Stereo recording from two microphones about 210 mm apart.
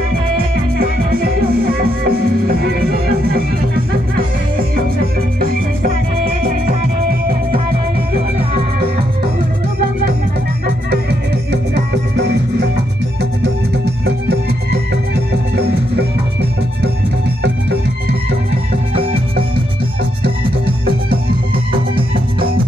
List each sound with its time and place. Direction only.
0.7 s music: 45° right (ahead or behind)
5.4 s music: 45° right (ahead or behind)
10.9 s music: 50° right (ahead or behind)
14.0 s music: 50° right (ahead or behind)
21.9 s music: 25° right (ahead or behind)